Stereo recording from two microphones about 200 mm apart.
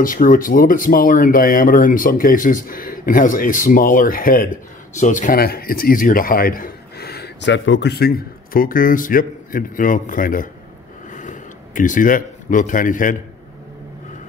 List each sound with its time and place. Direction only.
0.0 s speech: 45° left (ahead or behind)